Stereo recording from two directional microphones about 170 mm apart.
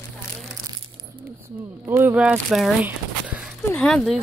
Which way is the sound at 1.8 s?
15° right (ahead or behind).